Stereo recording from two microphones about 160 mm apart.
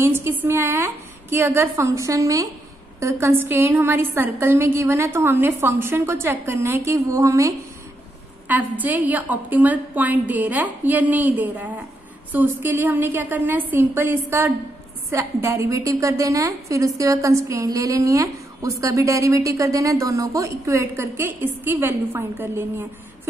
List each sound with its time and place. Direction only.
0.0 s a woman's voice: 15° right (ahead or behind)